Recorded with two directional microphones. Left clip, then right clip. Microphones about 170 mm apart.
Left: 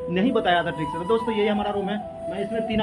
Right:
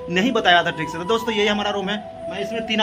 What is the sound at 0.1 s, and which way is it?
A man's voice, centre (ahead or behind).